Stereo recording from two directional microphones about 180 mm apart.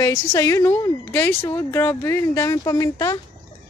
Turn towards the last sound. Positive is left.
turn(degrees=20)  # may be behind; listen again after turning